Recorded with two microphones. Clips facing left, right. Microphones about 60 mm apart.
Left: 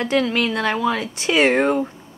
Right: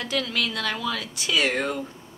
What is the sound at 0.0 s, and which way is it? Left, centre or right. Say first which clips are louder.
A woman's voice: left 8 dB; left.